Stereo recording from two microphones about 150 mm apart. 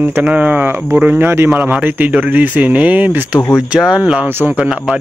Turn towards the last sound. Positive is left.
turn(degrees=-5)  # may be behind; listen again after turning